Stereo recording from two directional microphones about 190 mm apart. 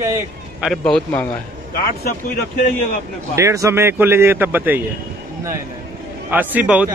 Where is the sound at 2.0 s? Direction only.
50° left (ahead or behind).